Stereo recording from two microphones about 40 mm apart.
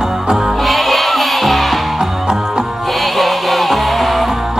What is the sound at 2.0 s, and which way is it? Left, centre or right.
Music, centre.